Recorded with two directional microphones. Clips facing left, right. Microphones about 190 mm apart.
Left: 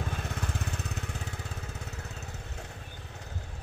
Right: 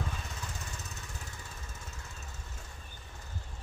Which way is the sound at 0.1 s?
60° left (ahead or behind).